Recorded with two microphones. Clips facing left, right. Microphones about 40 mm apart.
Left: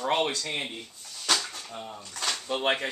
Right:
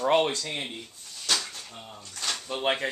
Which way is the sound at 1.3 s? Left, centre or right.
Left.